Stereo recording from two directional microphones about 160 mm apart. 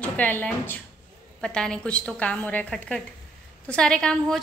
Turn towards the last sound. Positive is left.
turn(degrees=5)  # may be behind; listen again after turning